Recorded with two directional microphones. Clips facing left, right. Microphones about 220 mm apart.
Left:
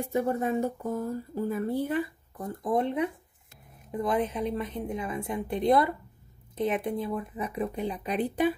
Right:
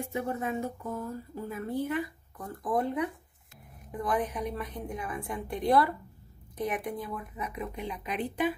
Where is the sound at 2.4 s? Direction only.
20° left (ahead or behind).